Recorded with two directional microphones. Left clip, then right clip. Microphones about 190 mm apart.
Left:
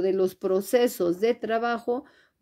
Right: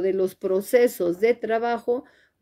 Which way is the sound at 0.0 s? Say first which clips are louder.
Right 1 dB; 15° left (ahead or behind).